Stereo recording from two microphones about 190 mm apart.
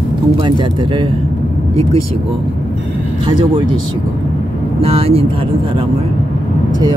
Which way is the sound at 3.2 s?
25° right (ahead or behind).